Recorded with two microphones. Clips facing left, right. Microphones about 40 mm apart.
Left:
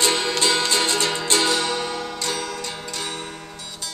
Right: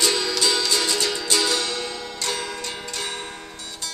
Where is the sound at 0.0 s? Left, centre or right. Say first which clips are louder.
Left 1 dB; left.